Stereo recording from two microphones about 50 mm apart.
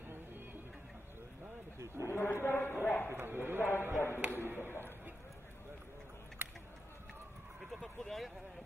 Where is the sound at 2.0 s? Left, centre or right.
Left.